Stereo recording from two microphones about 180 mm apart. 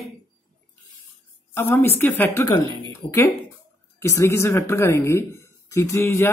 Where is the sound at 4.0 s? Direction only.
15° left (ahead or behind).